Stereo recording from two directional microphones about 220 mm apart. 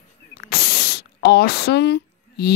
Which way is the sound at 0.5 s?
50° left (ahead or behind).